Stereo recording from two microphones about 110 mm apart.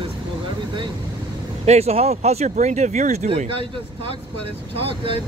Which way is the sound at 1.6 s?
75° right (ahead or behind).